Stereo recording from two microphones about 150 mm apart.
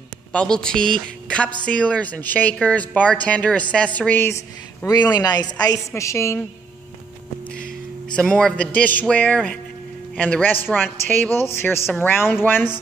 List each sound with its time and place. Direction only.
0.3 s a woman's voice: 5° left (ahead or behind)
4.8 s a woman's voice: 25° left (ahead or behind)
8.2 s speech: 5° left (ahead or behind)